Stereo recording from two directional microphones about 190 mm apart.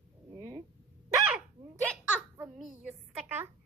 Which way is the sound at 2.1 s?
5° right (ahead or behind).